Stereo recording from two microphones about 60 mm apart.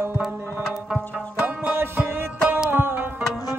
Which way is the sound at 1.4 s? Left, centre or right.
Right.